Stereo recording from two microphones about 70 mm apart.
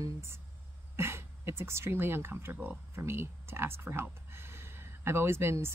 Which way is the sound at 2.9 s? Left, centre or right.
Right.